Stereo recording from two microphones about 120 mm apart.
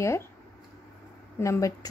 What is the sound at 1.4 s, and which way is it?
Speech, 25° left (ahead or behind).